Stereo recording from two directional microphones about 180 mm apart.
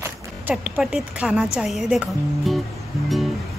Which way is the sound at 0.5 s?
5° right (ahead or behind).